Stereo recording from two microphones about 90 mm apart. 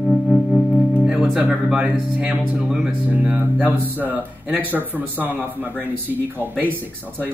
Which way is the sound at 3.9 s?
20° right (ahead or behind).